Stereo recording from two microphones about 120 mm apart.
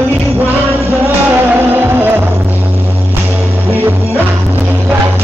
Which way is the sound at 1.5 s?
15° right (ahead or behind).